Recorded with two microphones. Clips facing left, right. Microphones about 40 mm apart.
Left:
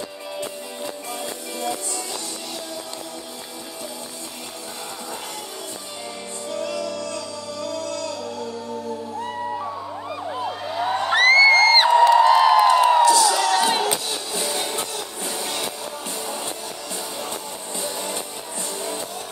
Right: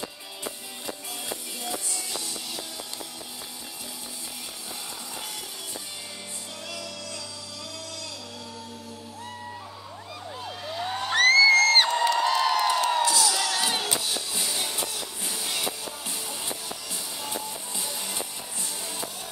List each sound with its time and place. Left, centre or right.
1.2 s music: centre
6.8 s music: centre
10.4 s a sound: left
13.2 s crowd: centre
13.7 s music: left
14.0 s music: centre
14.5 s music: centre
17.7 s music: centre